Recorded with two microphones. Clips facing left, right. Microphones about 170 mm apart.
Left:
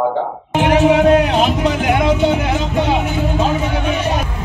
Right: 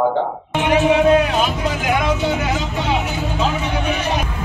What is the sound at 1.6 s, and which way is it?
Speech, 60° left (ahead or behind).